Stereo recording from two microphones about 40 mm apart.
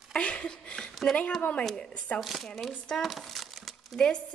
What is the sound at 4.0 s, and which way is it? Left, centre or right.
Speech, left.